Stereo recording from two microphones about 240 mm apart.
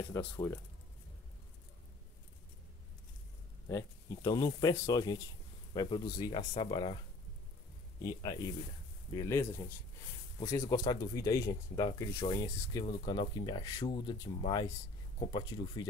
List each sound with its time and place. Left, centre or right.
0.1 s speech: centre
3.6 s speech: centre
8.0 s speech: centre